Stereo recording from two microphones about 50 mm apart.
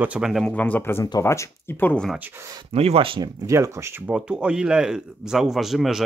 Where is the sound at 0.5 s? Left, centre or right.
Left.